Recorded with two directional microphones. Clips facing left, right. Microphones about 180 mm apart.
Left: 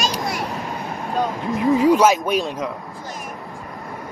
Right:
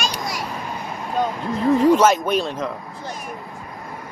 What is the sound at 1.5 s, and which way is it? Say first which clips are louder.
Speech: even; 10° left (ahead or behind).